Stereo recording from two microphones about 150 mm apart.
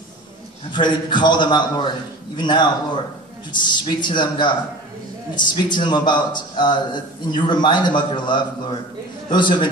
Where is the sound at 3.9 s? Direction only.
30° left (ahead or behind).